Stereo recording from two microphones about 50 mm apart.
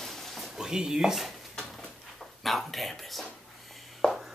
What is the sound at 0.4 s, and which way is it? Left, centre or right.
Speech, centre.